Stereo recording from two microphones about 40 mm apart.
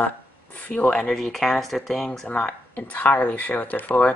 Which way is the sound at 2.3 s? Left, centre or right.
Left.